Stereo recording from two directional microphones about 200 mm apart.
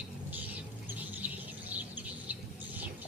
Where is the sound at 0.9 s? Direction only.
10° right (ahead or behind).